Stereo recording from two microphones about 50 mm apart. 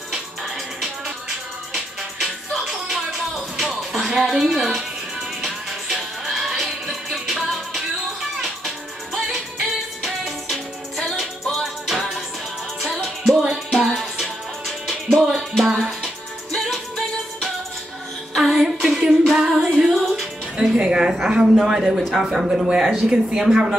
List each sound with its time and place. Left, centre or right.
1.7 s music: centre
15.3 s music: centre
18.3 s music: centre
18.6 s female singing: centre
19.7 s music: centre
20.5 s music: centre
21.3 s speech: centre